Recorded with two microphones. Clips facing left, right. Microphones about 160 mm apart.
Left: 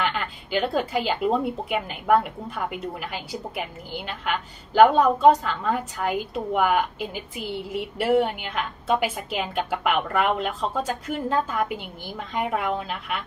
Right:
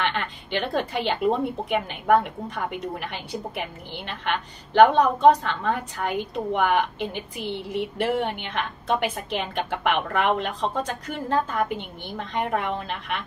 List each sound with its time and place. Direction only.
0.0 s speech: 5° left (ahead or behind)